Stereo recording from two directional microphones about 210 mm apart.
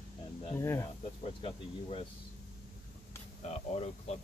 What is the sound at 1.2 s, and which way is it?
Speech, 25° left (ahead or behind).